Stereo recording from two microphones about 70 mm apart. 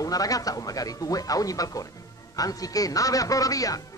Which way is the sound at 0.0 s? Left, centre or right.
Left.